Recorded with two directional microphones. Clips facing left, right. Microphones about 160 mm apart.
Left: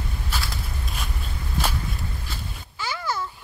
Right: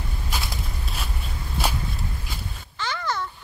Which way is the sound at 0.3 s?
20° right (ahead or behind).